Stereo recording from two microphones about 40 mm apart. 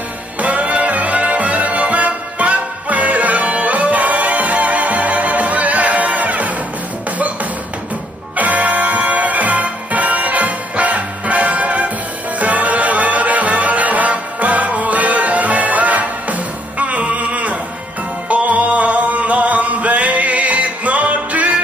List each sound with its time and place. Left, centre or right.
0.4 s music: right
8.4 s music: right